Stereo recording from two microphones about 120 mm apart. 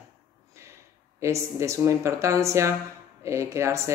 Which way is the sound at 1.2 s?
25° right (ahead or behind).